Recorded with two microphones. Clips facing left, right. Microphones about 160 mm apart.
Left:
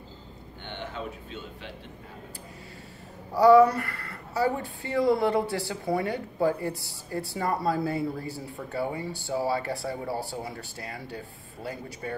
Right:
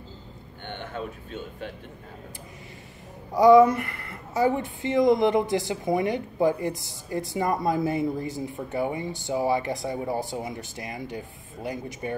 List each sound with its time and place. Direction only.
0.7 s speech: 50° right (ahead or behind)
3.3 s a woman's voice: 15° right (ahead or behind)